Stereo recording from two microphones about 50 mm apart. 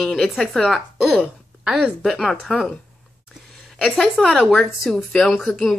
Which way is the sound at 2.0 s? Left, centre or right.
Centre.